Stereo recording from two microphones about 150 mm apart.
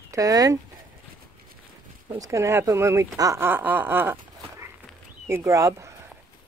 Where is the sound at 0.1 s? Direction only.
25° right (ahead or behind).